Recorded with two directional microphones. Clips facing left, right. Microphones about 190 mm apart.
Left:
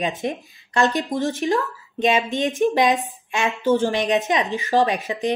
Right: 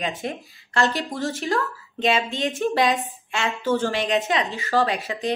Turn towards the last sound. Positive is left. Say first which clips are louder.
# left 2 dB
turn(degrees=20)  # may be behind; listen again after turning